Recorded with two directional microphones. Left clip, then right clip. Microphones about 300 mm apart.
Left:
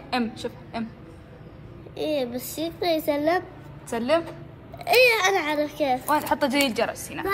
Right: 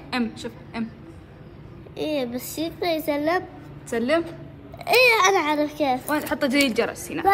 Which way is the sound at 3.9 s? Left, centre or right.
Centre.